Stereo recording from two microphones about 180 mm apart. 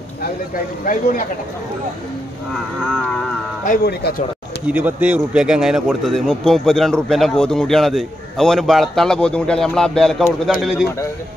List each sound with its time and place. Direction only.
2.5 s a man's voice: centre (ahead or behind)
3.6 s speech: 55° left (ahead or behind)
4.6 s a man's voice: 10° right (ahead or behind)